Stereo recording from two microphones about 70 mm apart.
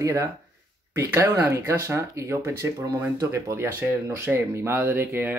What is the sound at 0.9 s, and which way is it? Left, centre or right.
Speech, right.